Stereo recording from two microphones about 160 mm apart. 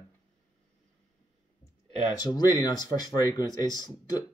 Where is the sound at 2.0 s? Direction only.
25° left (ahead or behind).